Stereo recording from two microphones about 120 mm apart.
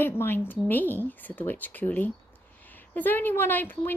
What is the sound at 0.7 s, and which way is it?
A woman's voice, 15° left (ahead or behind).